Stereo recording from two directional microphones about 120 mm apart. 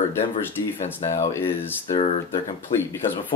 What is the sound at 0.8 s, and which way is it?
Speech, 80° left.